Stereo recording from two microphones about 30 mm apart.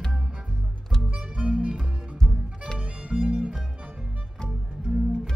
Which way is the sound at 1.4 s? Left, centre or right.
Right.